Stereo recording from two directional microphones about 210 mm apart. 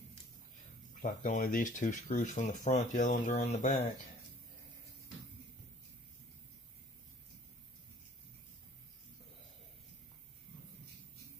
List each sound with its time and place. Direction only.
1.0 s speech: 40° left (ahead or behind)